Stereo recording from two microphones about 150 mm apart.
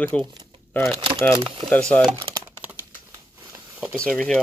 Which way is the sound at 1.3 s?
35° right (ahead or behind).